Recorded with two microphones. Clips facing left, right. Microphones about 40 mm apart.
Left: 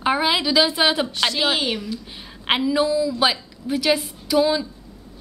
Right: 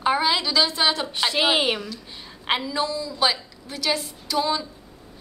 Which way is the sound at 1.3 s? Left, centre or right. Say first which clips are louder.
Right 1 dB; centre.